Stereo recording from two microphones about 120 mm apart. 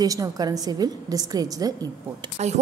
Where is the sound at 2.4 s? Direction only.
70° right (ahead or behind).